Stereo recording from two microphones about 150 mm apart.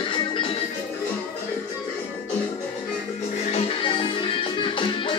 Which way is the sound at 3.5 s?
35° left (ahead or behind).